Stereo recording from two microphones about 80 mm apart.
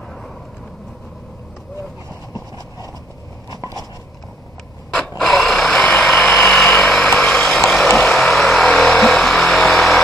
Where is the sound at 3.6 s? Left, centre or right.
Right.